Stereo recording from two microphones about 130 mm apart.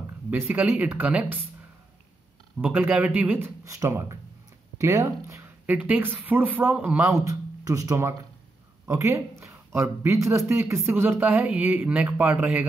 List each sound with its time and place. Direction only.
0.3 s speech: 15° right (ahead or behind)
2.6 s speech: 15° right (ahead or behind)
5.8 s speech: 15° right (ahead or behind)
7.1 s speech: 25° right (ahead or behind)